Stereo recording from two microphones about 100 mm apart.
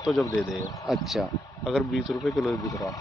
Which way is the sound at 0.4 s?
Centre (ahead or behind).